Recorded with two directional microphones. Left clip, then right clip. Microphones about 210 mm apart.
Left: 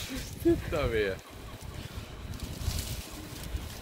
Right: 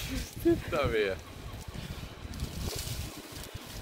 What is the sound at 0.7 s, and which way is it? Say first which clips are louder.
Speech: right 1 dB; 20° right (ahead or behind).